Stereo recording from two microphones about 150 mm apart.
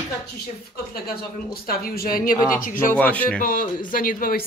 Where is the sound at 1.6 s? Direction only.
90° left.